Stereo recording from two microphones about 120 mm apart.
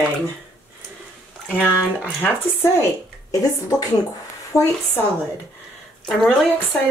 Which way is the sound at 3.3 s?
30° left (ahead or behind).